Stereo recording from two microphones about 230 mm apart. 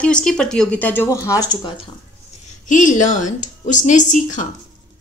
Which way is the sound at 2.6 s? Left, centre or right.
Left.